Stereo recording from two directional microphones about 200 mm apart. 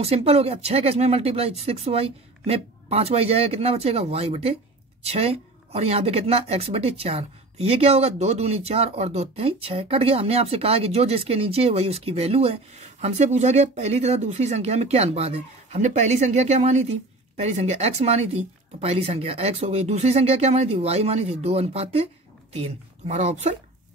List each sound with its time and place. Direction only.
0.0 s a woman's voice: 30° right (ahead or behind)